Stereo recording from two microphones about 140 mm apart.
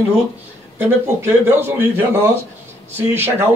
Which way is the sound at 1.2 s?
20° right (ahead or behind).